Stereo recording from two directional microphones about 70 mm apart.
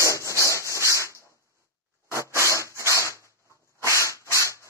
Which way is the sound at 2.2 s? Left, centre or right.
Left.